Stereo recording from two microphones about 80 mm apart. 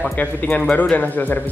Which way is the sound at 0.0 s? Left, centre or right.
Left.